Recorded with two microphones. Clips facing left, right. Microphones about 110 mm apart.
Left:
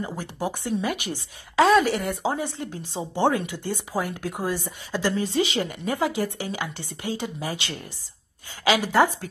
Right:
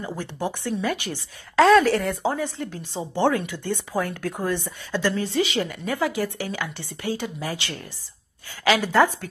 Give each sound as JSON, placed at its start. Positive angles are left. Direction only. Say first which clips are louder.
{"t": 0.1, "sound": "a woman's voice", "louder": "right 1 dB", "side_deg": 10}
{"t": 1.7, "sound": "speech", "louder": "right 3 dB", "side_deg": 5}
{"t": 2.3, "sound": "a woman's voice", "louder": "right 1 dB", "side_deg": 20}